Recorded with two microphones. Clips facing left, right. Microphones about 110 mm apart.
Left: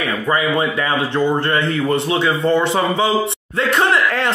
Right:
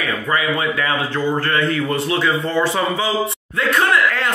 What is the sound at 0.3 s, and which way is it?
Speech, 25° left (ahead or behind).